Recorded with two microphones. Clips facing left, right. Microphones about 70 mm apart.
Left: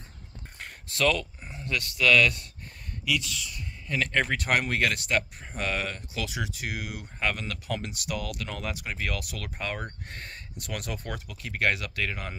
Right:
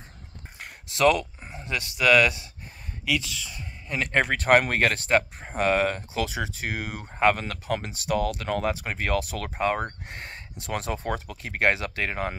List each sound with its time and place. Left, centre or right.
0.8 s speech: right
3.1 s speech: right
4.2 s speech: right